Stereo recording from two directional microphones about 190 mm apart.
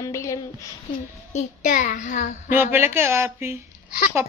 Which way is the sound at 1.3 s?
40° left (ahead or behind).